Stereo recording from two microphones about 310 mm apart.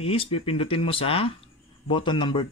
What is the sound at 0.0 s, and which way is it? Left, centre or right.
Speech, centre.